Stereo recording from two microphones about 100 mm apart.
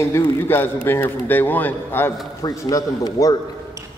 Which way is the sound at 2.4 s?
35° left (ahead or behind).